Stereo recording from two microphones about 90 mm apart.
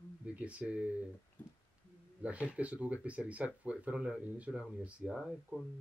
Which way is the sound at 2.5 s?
15° right (ahead or behind).